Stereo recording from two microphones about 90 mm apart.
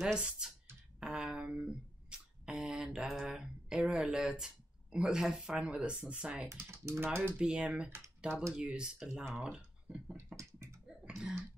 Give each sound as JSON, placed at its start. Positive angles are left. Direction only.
{"t": 0.0, "sound": "speech", "side_deg": -10}
{"t": 0.9, "sound": "a sound", "side_deg": -10}
{"t": 2.0, "sound": "speech", "side_deg": -10}
{"t": 6.5, "sound": "speech", "side_deg": -30}
{"t": 7.3, "sound": "speech", "side_deg": -10}
{"t": 9.1, "sound": "speech", "side_deg": 10}
{"t": 9.4, "sound": "speech", "side_deg": -10}
{"t": 10.1, "sound": "beatboxing", "side_deg": -35}
{"t": 11.1, "sound": "speech", "side_deg": -5}